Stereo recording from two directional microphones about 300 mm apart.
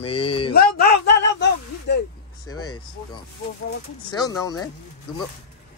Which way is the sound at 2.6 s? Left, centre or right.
Centre.